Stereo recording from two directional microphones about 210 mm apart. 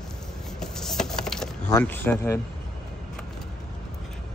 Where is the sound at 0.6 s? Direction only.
Centre (ahead or behind).